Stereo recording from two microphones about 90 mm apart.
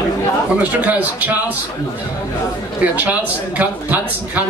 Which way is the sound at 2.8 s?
15° right (ahead or behind).